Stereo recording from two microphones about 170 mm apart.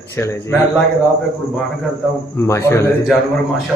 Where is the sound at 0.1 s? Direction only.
15° left (ahead or behind).